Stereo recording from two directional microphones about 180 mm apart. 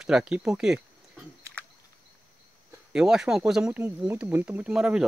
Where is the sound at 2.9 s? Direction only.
5° right (ahead or behind).